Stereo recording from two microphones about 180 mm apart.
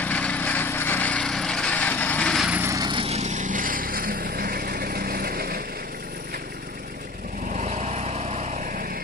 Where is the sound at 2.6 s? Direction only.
20° right (ahead or behind); by 5.6 s 55° right (ahead or behind).